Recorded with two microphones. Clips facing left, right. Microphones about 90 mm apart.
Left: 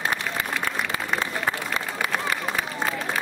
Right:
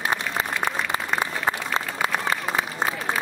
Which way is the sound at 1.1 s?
25° right (ahead or behind).